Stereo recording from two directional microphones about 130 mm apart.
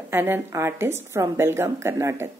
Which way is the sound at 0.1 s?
20° right (ahead or behind).